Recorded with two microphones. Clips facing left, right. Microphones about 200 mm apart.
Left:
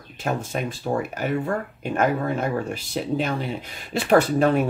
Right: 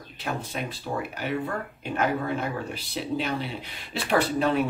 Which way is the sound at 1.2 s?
45° left (ahead or behind).